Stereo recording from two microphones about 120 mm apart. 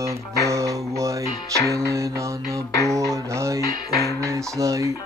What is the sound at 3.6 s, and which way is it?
Music, 25° left (ahead or behind).